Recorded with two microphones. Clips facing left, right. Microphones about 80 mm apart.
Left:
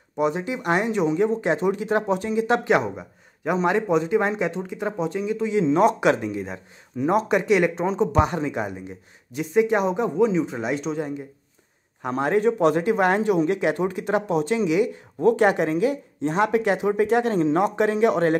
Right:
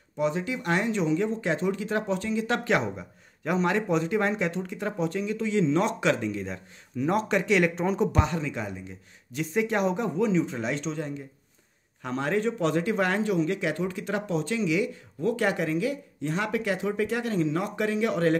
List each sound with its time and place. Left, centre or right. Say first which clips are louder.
0.2 s speech: left 4 dB; centre
7.9 s speech: left 3 dB; centre
8.4 s speech: left 6 dB; left